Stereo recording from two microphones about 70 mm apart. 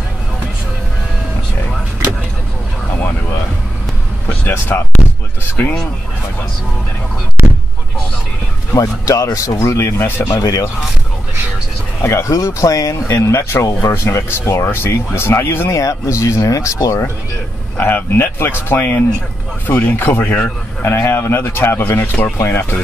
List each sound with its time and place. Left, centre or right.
4.3 s speech: left
7.4 s a sound: right
8.7 s speech: left
10.4 s speech: left
12.0 s speech: left
13.2 s speech: left
15.7 s speech: left
17.7 s speech: left